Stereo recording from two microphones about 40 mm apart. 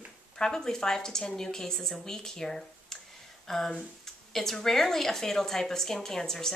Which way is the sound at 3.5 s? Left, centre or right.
Centre.